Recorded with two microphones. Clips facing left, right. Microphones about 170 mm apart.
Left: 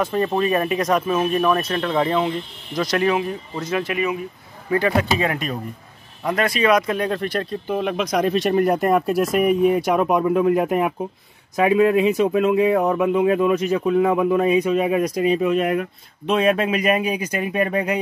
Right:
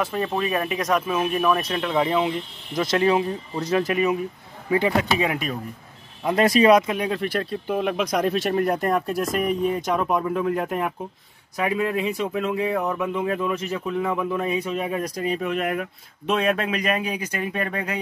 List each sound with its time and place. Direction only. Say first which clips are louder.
0.0 s speech: left 4 dB; 5° right (ahead or behind)
2.8 s speech: even; 25° right (ahead or behind)
4.6 s speech: left 2 dB; 15° right (ahead or behind)
6.3 s speech: right 3 dB; 35° right (ahead or behind)
6.9 s speech: left 2 dB; 10° right (ahead or behind); by 17.9 s 15° left (ahead or behind)